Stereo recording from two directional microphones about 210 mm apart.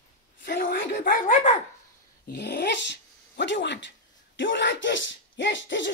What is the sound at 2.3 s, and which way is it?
Speech, 55° left (ahead or behind).